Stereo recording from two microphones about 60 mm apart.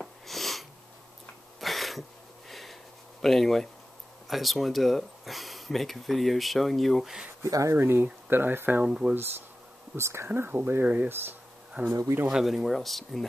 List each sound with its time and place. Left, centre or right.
0.0 s sniff: centre
1.6 s throat clearing: centre
2.5 s a sound: centre
4.3 s speech: centre
7.4 s speech: right
7.8 s speech: right
8.8 s speech: centre
9.1 s speech: right
10.2 s speech: right
11.9 s speech: right
12.3 s speech: centre